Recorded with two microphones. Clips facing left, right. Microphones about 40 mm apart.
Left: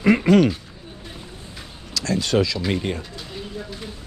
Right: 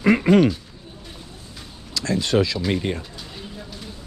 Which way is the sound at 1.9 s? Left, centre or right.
Right.